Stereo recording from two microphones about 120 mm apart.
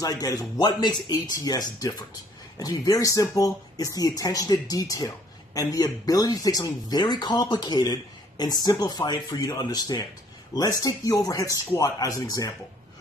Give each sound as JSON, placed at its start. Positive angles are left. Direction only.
{"t": 0.0, "sound": "speech", "side_deg": 30}